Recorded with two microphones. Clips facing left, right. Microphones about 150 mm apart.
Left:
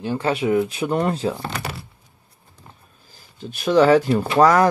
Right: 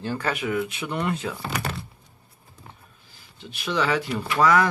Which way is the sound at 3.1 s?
45° left (ahead or behind).